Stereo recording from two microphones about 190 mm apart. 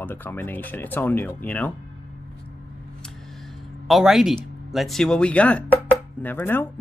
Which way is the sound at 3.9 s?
Centre (ahead or behind).